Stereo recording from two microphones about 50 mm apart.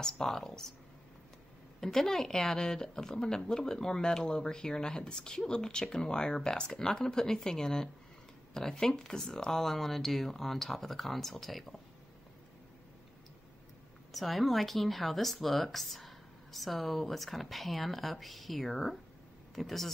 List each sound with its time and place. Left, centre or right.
0.0 s a woman's voice: centre
1.8 s a woman's voice: centre
14.1 s speech: centre